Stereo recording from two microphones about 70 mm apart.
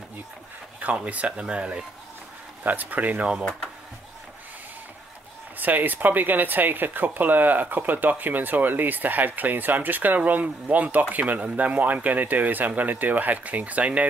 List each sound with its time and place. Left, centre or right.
0.7 s speech: right
5.6 s speech: right